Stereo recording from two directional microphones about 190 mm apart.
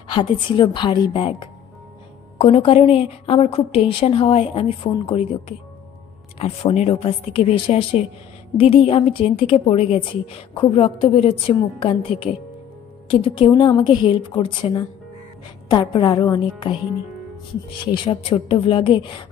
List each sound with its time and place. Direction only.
0.1 s a woman's voice: 25° left (ahead or behind)
17.9 s a woman's voice: 25° left (ahead or behind)